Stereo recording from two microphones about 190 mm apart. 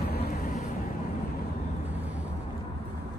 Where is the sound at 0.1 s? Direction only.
50° left (ahead or behind).